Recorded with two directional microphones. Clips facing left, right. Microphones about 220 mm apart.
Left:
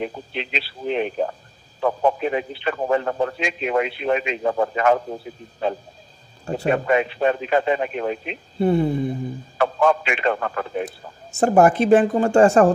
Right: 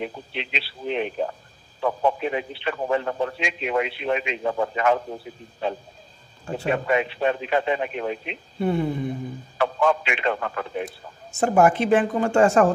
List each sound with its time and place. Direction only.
0.0 s a man's voice: 40° left (ahead or behind)
6.4 s a man's voice: 40° left (ahead or behind)
9.6 s a man's voice: 45° left (ahead or behind)